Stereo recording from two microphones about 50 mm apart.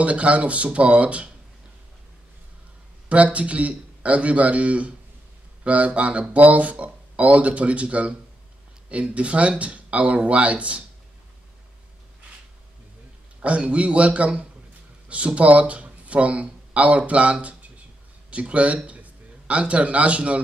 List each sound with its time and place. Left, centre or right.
0.0 s speech: right
3.1 s speech: right
13.6 s a man's voice: right